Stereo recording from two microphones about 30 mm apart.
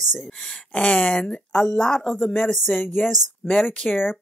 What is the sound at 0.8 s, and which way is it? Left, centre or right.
Speech, left.